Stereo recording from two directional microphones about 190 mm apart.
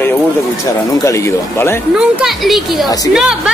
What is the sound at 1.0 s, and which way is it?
Speech, 15° left (ahead or behind).